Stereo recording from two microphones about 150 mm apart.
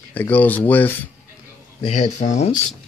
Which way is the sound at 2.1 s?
50° left (ahead or behind).